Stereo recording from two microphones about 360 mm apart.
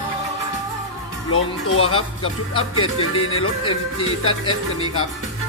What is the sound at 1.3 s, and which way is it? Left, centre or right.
Speech, left.